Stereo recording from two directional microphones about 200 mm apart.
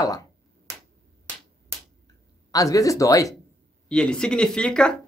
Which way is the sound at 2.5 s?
15° left (ahead or behind).